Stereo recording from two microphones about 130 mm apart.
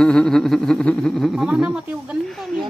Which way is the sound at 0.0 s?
5° left (ahead or behind).